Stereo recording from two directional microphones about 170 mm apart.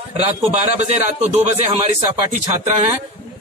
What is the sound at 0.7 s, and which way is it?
A man's voice, 40° right (ahead or behind).